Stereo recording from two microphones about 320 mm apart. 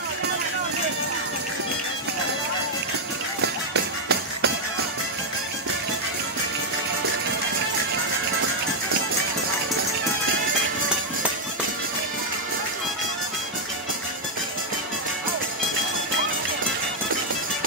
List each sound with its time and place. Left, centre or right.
3.7 s music: right